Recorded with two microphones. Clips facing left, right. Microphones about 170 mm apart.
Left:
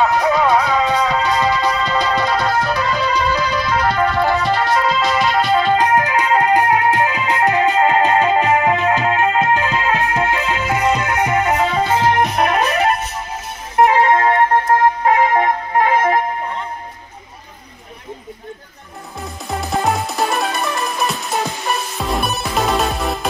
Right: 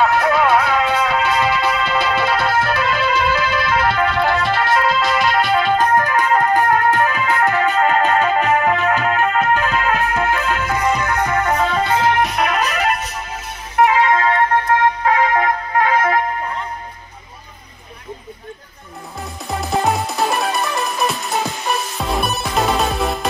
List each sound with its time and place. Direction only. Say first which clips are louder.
0.0 s music: even; 5° right (ahead or behind)
4.3 s music: left 1 dB; 15° left (ahead or behind)
4.7 s music: left 1 dB; centre (ahead or behind)
5.8 s music: even; 15° left (ahead or behind)
12.0 s music: left 1 dB; 35° left (ahead or behind)
13.8 s music: left 2 dB; 40° left (ahead or behind)
15.0 s music: left 1 dB; 25° left (ahead or behind)
19.6 s music: right 1 dB; centre (ahead or behind)